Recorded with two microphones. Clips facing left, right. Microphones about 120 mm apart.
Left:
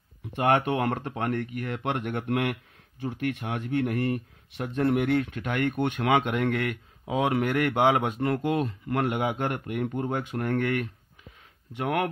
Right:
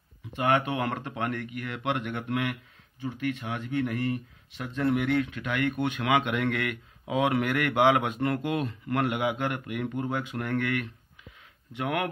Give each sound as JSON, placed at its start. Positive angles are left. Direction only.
{"t": 0.3, "sound": "speech", "side_deg": 50}
{"t": 5.2, "sound": "speech", "side_deg": 45}